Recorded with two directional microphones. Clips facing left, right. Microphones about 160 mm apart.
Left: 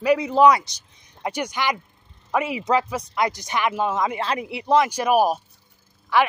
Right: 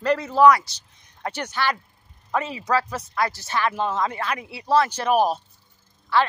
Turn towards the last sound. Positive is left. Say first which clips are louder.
# left 1 dB
turn(degrees=15)  # may be behind; listen again after turning